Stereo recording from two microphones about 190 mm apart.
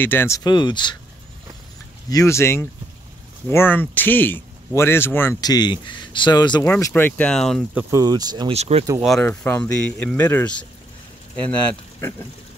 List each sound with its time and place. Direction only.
0.0 s speech: 10° left (ahead or behind)
2.0 s speech: 15° left (ahead or behind)
6.6 s speech: 10° left (ahead or behind)
7.7 s speech: 20° right (ahead or behind)
8.5 s speech: 35° right (ahead or behind)
9.0 s speech: 5° left (ahead or behind)